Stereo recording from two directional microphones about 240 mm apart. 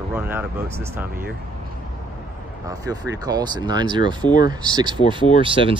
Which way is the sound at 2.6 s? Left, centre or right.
Centre.